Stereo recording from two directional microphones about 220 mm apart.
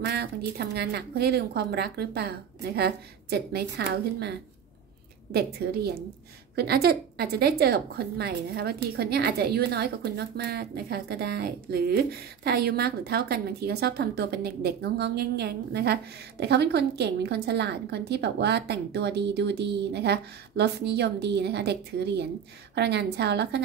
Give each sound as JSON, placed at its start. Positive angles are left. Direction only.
{"t": 0.0, "sound": "speech", "side_deg": -45}